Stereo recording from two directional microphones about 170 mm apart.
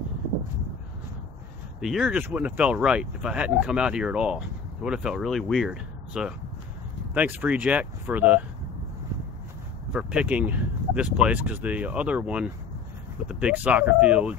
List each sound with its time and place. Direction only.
1.8 s speech: 5° right (ahead or behind)
9.9 s speech: 5° right (ahead or behind)